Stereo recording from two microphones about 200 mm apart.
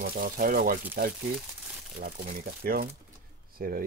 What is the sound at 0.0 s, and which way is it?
Speech, 45° right (ahead or behind).